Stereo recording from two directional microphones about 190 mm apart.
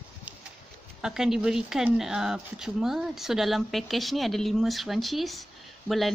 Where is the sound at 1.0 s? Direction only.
5° right (ahead or behind).